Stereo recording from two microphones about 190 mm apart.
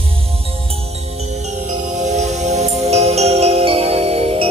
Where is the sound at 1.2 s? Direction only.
35° right (ahead or behind).